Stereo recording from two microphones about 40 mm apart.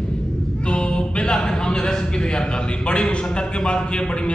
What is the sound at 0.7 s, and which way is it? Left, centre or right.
A man's voice, left.